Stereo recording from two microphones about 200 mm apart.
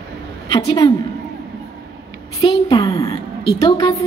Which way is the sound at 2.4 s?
20° left (ahead or behind).